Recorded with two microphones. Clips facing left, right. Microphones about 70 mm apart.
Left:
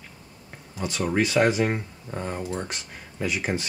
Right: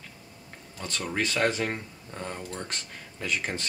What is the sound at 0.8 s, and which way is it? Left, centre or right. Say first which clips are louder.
Speech: left 6 dB; centre.